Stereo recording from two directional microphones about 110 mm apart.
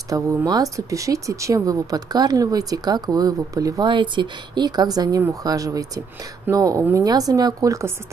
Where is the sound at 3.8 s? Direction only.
45° right (ahead or behind).